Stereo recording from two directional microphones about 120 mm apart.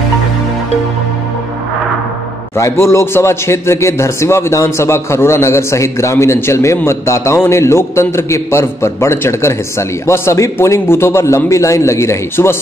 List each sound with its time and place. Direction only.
2.5 s a man's voice: 20° left (ahead or behind)